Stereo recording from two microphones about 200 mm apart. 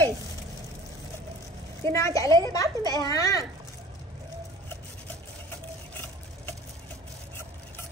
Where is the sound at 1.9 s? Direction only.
15° left (ahead or behind).